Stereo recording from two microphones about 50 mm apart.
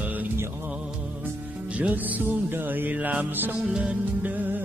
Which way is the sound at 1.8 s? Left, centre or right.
Right.